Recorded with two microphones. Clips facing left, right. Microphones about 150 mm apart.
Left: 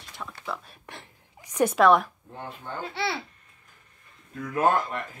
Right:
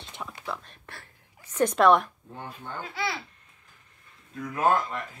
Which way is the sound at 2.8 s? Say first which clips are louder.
Left 2 dB; 30° left (ahead or behind).